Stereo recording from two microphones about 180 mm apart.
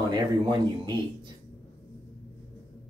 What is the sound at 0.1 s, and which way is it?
Speech, 25° right (ahead or behind).